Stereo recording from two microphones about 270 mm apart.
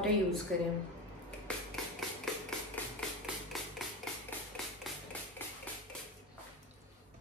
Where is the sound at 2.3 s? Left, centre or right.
Centre.